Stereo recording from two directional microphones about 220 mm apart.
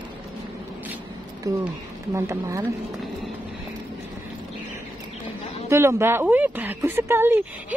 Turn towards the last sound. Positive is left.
turn(degrees=-10)  # may be behind; listen again after turning